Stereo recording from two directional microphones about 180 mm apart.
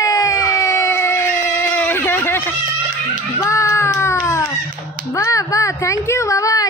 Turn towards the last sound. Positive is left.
turn(degrees=20)  # may be behind; listen again after turning